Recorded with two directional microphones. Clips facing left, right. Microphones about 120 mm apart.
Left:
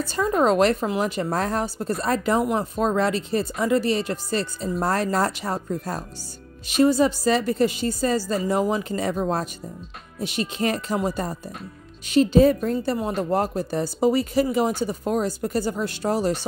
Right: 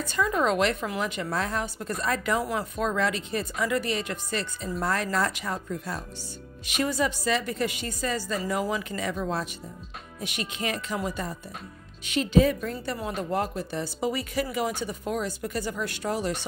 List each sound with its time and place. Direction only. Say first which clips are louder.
0.0 s a woman's voice: left 5 dB; 35° left (ahead or behind)